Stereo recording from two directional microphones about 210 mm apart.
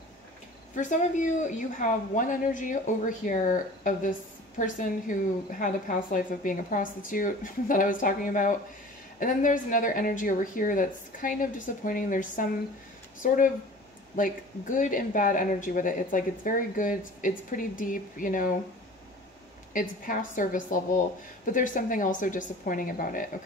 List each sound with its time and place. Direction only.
0.7 s speech: 35° left (ahead or behind)
19.7 s speech: 40° left (ahead or behind)